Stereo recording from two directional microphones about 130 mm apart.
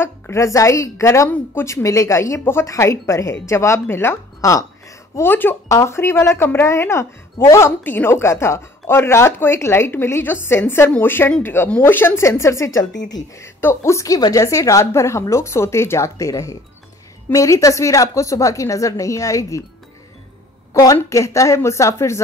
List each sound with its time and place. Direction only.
0.0 s speech: 20° left (ahead or behind)
20.7 s speech: 25° left (ahead or behind)